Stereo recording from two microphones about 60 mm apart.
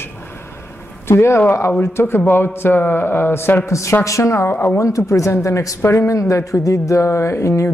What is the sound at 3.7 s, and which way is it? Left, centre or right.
Speech, left.